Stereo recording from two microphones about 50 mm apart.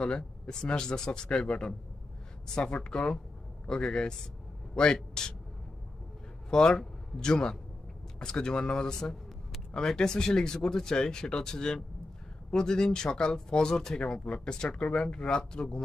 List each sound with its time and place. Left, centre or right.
0.0 s a man's voice: centre
6.5 s speech: centre